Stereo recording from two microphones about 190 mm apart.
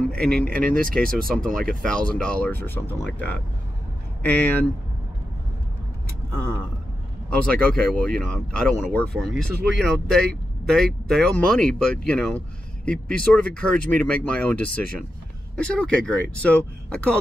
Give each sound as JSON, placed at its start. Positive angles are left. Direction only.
{"t": 0.1, "sound": "speech", "side_deg": 5}
{"t": 0.7, "sound": "speech", "side_deg": -50}
{"t": 1.3, "sound": "speech", "side_deg": 0}
{"t": 7.2, "sound": "speech", "side_deg": 5}